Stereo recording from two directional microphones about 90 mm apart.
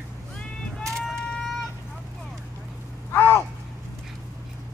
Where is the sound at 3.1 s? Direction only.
25° left (ahead or behind).